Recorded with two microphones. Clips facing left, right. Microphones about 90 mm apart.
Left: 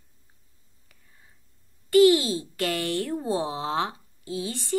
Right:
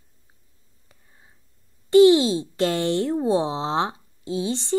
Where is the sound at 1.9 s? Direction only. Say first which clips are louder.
Right 4 dB; 25° right (ahead or behind).